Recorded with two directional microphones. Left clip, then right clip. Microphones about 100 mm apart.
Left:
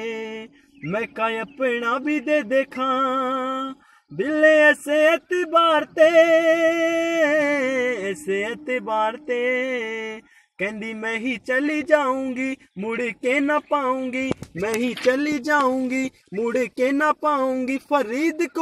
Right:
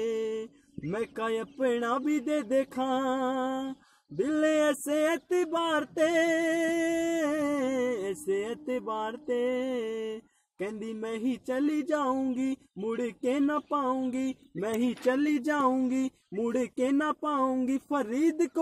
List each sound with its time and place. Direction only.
0.8 s a sound: 25° right (ahead or behind)
13.7 s speech: 20° right (ahead or behind)
15.0 s speech: 25° right (ahead or behind)